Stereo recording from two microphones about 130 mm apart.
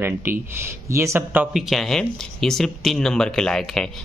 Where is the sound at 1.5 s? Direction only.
Centre (ahead or behind).